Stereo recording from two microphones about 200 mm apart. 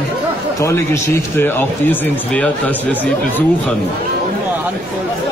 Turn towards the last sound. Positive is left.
turn(degrees=5)  # may be behind; listen again after turning